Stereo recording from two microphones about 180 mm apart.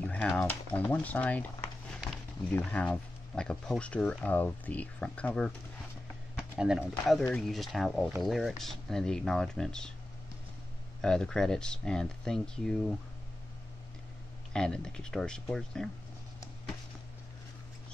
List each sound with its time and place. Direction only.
0.0 s speech: 5° left (ahead or behind)
2.5 s speech: 5° left (ahead or behind)
6.5 s speech: 5° right (ahead or behind)
11.0 s speech: 5° left (ahead or behind)
14.5 s speech: 5° left (ahead or behind)